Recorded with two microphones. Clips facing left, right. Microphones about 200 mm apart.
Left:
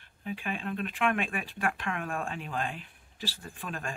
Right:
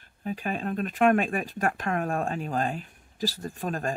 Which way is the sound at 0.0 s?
40° right (ahead or behind).